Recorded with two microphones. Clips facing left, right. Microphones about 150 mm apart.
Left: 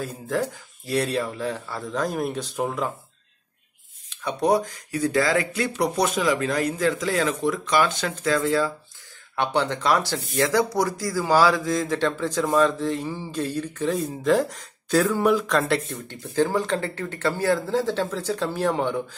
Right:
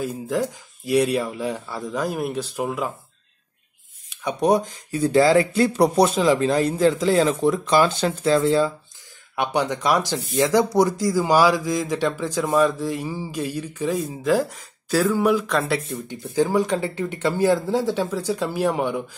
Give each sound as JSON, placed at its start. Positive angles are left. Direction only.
{"t": 0.0, "sound": "speech", "side_deg": -10}
{"t": 4.1, "sound": "speech", "side_deg": -15}